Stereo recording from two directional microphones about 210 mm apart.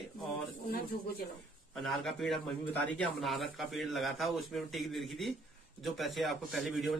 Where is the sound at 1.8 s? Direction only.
Centre (ahead or behind).